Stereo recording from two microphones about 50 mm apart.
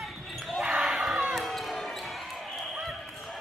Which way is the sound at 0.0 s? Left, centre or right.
Centre.